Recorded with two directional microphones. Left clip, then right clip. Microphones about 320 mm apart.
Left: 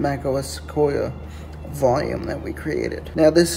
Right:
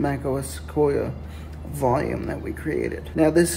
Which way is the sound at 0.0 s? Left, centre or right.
Centre.